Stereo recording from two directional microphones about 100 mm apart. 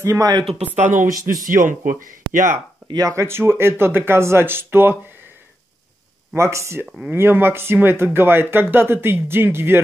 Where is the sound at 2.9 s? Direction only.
35° right (ahead or behind).